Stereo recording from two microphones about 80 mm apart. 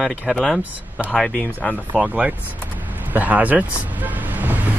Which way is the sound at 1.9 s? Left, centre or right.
Centre.